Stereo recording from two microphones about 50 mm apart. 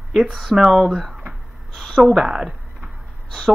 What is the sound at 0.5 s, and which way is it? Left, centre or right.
Speech, centre.